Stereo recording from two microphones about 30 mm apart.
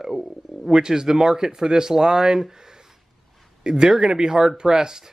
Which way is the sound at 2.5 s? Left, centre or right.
Right.